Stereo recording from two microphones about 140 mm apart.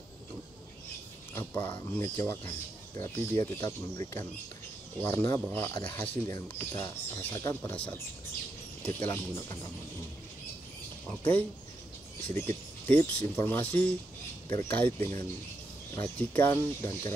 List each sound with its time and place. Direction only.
1.3 s speech: 20° left (ahead or behind)
11.1 s speech: 15° left (ahead or behind)